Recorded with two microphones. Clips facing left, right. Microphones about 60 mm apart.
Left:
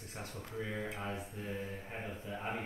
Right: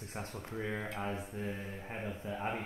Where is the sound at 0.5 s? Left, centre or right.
Centre.